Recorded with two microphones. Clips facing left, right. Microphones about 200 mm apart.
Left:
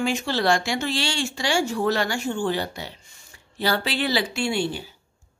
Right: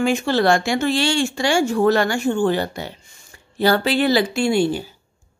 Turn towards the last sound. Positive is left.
turn(degrees=-45)  # may be behind; listen again after turning